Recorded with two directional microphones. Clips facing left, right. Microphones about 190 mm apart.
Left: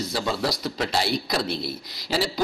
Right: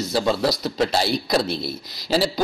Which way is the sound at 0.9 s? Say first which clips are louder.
Right 4 dB; 30° right (ahead or behind).